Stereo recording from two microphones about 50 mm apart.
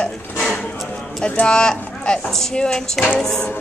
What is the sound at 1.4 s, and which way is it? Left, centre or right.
Speech, centre.